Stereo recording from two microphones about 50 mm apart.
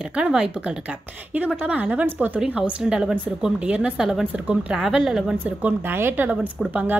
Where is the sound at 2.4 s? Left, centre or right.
Right.